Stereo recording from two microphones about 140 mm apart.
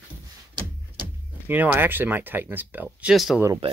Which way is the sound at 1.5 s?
15° right (ahead or behind).